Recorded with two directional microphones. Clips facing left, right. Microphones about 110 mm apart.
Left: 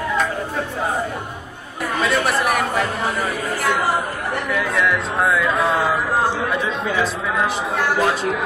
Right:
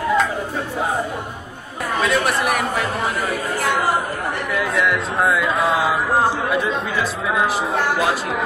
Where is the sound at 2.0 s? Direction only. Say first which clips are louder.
Even; centre (ahead or behind).